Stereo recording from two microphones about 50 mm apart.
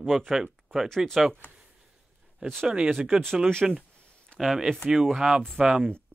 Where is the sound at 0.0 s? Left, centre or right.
Centre.